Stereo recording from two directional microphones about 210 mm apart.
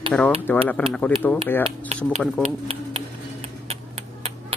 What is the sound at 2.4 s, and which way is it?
Speech, 30° right (ahead or behind).